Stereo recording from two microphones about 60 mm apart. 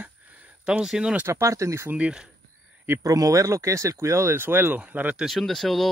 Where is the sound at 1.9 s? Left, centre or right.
Centre.